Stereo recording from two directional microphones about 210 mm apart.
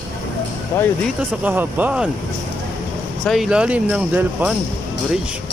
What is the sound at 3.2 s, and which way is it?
Speech, centre (ahead or behind).